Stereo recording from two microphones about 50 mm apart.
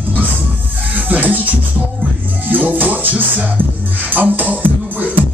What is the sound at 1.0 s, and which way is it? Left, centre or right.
Music, right.